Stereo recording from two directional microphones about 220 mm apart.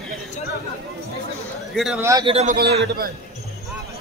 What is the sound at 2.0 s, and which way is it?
Speech, 15° right (ahead or behind).